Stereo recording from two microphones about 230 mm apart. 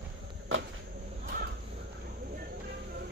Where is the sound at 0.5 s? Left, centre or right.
Right.